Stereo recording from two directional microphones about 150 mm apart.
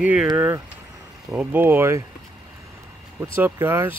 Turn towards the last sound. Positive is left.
turn(degrees=-15)  # may be behind; listen again after turning